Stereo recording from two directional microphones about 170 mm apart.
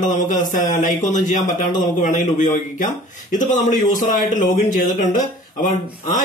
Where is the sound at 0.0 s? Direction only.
50° left (ahead or behind).